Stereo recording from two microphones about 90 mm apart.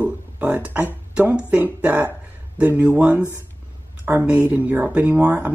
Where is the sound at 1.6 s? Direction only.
20° right (ahead or behind).